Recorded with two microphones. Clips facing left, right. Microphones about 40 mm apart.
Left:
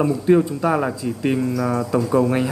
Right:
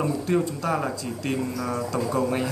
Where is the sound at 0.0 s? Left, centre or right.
Centre.